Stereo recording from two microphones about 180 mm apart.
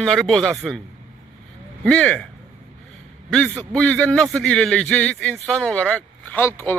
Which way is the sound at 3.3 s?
5° left (ahead or behind).